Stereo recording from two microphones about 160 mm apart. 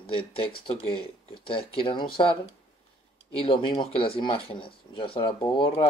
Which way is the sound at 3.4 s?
35° left (ahead or behind).